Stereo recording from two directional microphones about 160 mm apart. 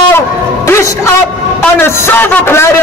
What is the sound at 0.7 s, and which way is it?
A man's voice, 15° left (ahead or behind).